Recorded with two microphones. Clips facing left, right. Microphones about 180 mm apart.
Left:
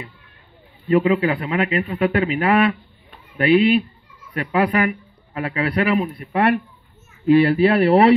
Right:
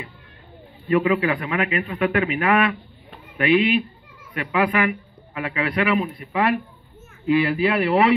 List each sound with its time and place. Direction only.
0.8 s a man's voice: 35° left (ahead or behind)
7.2 s a man's voice: 35° left (ahead or behind)